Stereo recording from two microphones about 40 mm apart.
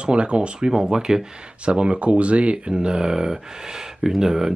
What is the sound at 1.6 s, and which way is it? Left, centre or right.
Speech, right.